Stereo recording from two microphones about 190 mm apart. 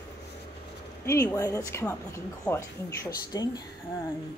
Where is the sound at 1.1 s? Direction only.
15° left (ahead or behind).